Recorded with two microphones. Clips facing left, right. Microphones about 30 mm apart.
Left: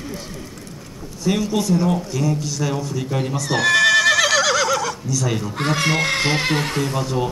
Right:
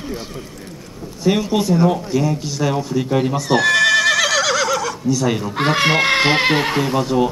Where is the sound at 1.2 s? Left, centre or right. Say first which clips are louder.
Right 3 dB; centre.